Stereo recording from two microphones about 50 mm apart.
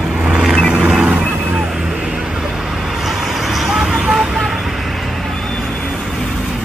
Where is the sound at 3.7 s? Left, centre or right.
Centre.